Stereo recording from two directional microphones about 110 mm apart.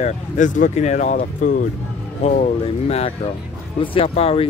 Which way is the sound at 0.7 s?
90° left.